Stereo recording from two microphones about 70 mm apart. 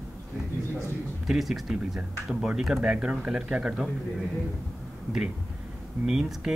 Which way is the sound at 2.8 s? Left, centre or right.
Centre.